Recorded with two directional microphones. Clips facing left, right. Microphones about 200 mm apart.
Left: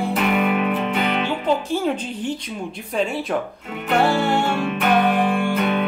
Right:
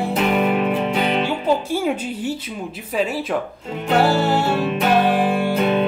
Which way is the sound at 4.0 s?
5° right (ahead or behind).